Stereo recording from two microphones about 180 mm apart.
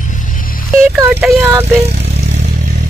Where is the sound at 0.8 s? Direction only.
10° right (ahead or behind).